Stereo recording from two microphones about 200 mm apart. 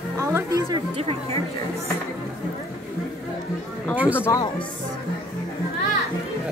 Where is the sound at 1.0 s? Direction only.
30° right (ahead or behind).